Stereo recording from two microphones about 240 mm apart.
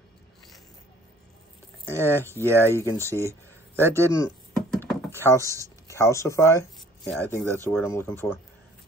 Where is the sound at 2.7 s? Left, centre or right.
Centre.